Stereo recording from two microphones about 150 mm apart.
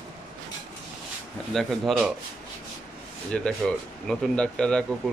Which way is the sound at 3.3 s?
5° left (ahead or behind).